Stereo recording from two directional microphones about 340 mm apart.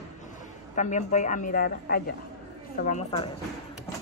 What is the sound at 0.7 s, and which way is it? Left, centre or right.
Speech, left.